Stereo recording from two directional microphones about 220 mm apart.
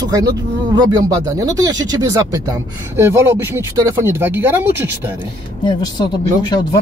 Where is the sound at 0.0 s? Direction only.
15° right (ahead or behind).